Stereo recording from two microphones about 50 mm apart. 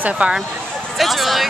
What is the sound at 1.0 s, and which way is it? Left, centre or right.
Speech, centre.